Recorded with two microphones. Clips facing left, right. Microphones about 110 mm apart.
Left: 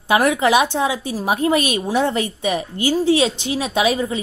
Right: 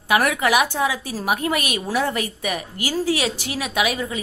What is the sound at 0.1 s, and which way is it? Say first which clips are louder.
A woman's voice: left 3 dB; 25° left (ahead or behind).